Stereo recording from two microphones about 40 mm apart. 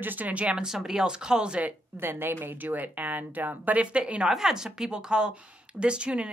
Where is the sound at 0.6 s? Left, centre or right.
Centre.